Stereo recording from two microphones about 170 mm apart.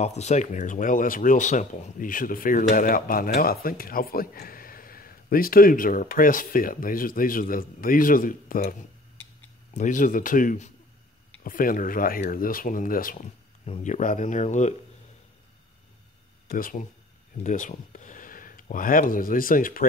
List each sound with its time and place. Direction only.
0.0 s speech: 40° left (ahead or behind)
9.8 s speech: 50° left (ahead or behind)
13.7 s speech: 40° left (ahead or behind)
16.4 s speech: 55° left (ahead or behind)